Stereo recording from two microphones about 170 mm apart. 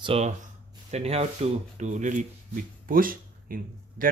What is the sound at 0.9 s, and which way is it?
Speech, 40° right (ahead or behind).